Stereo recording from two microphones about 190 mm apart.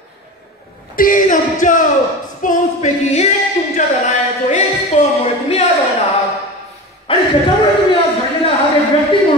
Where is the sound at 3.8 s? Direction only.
35° left (ahead or behind).